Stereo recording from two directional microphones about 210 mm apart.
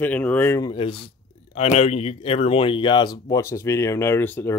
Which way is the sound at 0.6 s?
25° left (ahead or behind).